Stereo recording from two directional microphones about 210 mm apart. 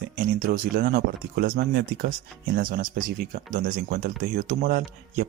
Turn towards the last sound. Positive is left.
turn(degrees=-40)  # may be behind; listen again after turning